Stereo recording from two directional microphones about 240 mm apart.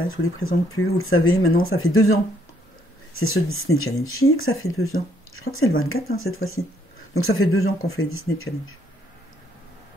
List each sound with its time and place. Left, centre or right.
0.2 s speech: left
3.2 s speech: left